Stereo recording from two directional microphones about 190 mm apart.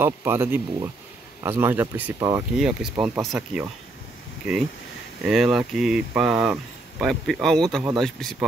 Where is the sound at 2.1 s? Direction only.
20° right (ahead or behind).